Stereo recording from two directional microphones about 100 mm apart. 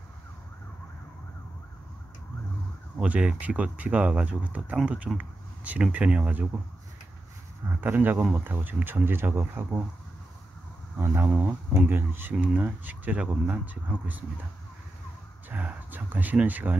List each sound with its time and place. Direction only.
3.0 s speech: 10° right (ahead or behind)
7.8 s speech: 15° right (ahead or behind)
11.2 s speech: 15° right (ahead or behind)
15.5 s speech: 15° right (ahead or behind)